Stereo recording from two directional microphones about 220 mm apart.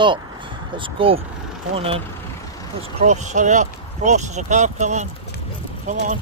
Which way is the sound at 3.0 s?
30° right (ahead or behind).